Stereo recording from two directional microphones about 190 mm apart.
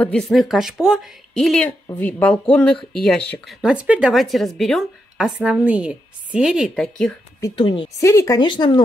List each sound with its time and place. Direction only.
0.0 s speech: 5° left (ahead or behind)
3.6 s speech: 5° right (ahead or behind)
7.3 s speech: 20° left (ahead or behind)
8.0 s speech: 15° left (ahead or behind)